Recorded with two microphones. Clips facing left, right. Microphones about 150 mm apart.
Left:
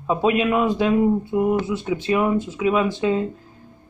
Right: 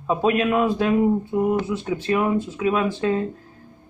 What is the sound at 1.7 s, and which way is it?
Speech, 15° left (ahead or behind).